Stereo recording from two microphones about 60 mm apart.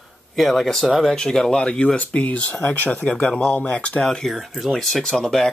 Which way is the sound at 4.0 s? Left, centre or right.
Centre.